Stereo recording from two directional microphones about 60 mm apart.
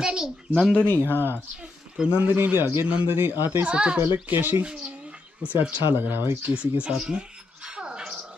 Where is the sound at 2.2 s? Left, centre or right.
Right.